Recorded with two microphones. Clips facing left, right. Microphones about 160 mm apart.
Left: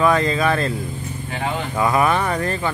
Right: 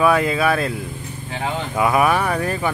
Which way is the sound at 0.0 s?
10° right (ahead or behind).